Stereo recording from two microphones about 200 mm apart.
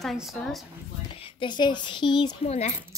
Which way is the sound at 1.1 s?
25° left (ahead or behind).